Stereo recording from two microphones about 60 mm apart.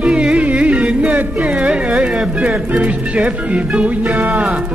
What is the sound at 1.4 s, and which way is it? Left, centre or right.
Carnatic music, centre.